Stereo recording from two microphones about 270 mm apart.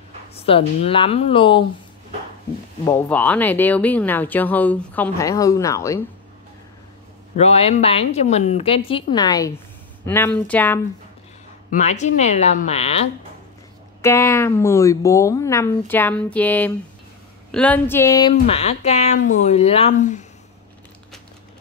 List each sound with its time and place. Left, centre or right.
0.3 s a woman's voice: left
2.8 s speech: centre
7.3 s a woman's voice: left; by 10.8 s centre
11.7 s a woman's voice: left
14.0 s a woman's voice: centre; by 20.2 s left